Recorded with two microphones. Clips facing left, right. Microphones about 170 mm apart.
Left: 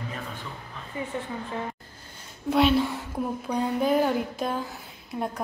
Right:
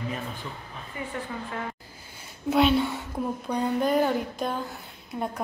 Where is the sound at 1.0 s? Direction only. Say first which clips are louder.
Left 3 dB; 25° left (ahead or behind).